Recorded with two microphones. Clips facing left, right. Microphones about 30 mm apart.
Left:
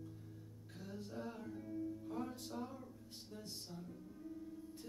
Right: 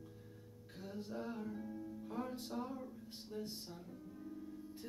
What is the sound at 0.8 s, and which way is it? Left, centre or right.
Music, centre.